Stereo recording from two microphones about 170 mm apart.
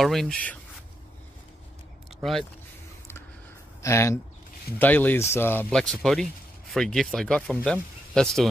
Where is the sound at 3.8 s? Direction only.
15° left (ahead or behind).